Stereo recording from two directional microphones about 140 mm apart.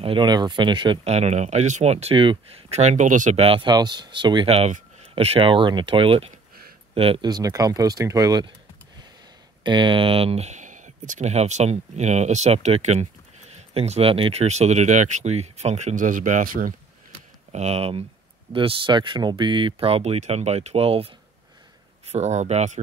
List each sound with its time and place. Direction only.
0.0 s speech: 35° right (ahead or behind)
1.0 s speech: 50° right (ahead or behind)
2.7 s speech: 55° right (ahead or behind)
3.3 s speech: 40° right (ahead or behind)
3.7 s speech: 30° right (ahead or behind)
9.6 s speech: 35° right (ahead or behind); by 16.7 s 70° right (ahead or behind)
17.5 s speech: 50° right (ahead or behind)
22.1 s speech: 55° right (ahead or behind)